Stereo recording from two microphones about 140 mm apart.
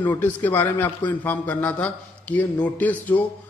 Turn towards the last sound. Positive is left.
turn(degrees=10)  # may be behind; listen again after turning